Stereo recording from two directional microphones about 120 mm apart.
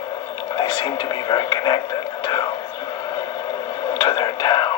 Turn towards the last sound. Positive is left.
turn(degrees=40)  # may be behind; listen again after turning